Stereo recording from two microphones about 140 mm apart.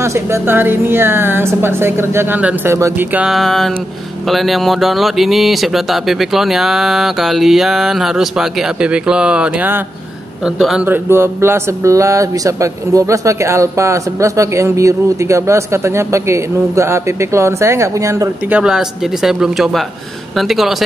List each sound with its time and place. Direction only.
0.0 s a woman's voice: 20° right (ahead or behind); by 10.9 s 5° right (ahead or behind)
10.9 s speech: 15° right (ahead or behind)
18.5 s speech: 5° right (ahead or behind)